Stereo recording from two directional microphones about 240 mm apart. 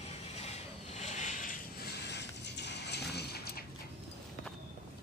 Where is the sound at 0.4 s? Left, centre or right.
Left.